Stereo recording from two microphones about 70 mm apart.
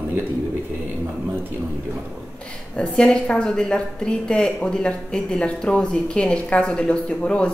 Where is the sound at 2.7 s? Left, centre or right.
Centre.